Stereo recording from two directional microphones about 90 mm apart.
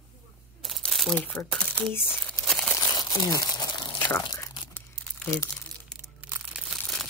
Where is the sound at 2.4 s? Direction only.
5° left (ahead or behind).